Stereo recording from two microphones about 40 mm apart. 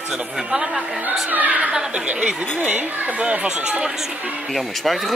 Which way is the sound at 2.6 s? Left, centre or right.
Right.